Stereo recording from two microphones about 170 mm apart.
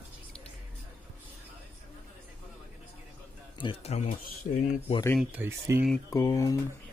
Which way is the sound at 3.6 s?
35° left (ahead or behind).